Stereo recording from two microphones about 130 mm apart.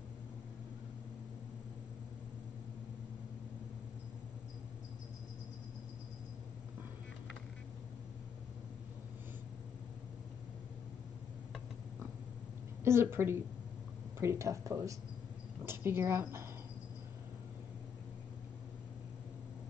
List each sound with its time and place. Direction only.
12.8 s a woman's voice: 20° right (ahead or behind)